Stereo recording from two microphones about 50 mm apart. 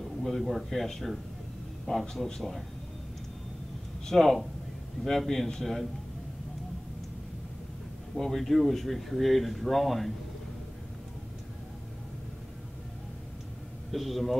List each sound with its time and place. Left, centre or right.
0.2 s speech: centre
4.0 s speech: centre
8.2 s speech: centre
13.9 s speech: centre